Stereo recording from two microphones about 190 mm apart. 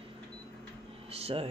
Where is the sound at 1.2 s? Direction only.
30° right (ahead or behind).